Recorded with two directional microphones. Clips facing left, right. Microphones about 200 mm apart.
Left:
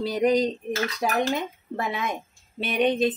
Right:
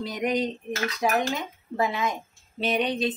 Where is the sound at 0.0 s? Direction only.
35° left (ahead or behind).